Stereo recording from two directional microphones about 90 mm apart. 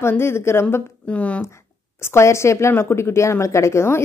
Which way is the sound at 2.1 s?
30° left (ahead or behind).